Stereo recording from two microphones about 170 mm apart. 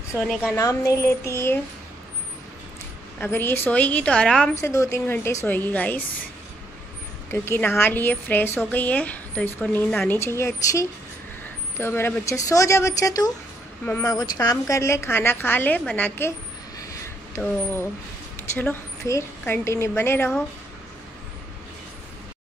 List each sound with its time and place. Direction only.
0.1 s a woman's voice: 5° right (ahead or behind)
0.6 s a woman's voice: 20° left (ahead or behind)
3.2 s a woman's voice: 10° left (ahead or behind)
4.6 s a woman's voice: 20° left (ahead or behind)
7.2 s a woman's voice: 15° left (ahead or behind)
18.3 s a woman's voice: 10° left (ahead or behind)